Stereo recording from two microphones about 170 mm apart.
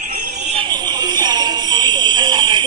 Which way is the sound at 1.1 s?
25° right (ahead or behind).